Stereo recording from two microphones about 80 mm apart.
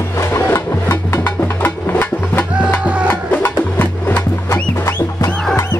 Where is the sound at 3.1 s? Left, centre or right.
Left.